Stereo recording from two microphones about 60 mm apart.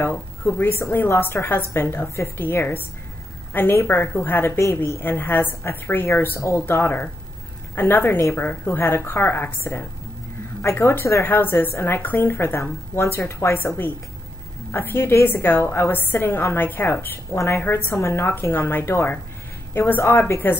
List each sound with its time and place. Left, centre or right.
0.0 s a woman's voice: left
6.3 s speech: left
6.7 s a woman's voice: left
10.6 s speech: left
11.2 s a woman's voice: left